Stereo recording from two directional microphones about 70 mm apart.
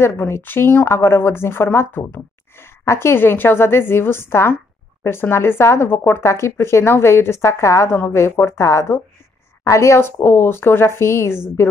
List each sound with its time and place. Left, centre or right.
0.0 s a woman's voice: left